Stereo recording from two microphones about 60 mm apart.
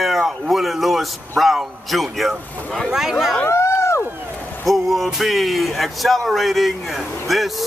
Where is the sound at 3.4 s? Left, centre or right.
Left.